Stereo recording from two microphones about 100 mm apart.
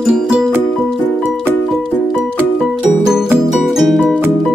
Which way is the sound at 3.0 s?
5° right (ahead or behind).